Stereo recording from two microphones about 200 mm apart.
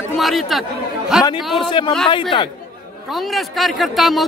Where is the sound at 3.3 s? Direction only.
Centre (ahead or behind).